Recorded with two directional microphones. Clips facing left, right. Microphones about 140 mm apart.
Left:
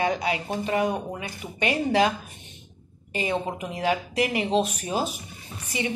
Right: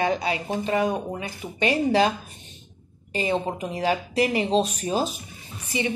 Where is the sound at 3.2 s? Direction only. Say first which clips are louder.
Right 2 dB; 30° right (ahead or behind).